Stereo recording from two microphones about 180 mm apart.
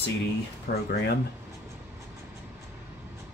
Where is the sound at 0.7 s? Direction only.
60° left (ahead or behind).